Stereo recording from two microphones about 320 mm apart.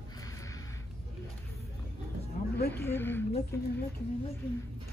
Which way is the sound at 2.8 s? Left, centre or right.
Centre.